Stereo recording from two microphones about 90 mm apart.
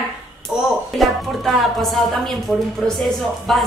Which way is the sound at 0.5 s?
10° right (ahead or behind).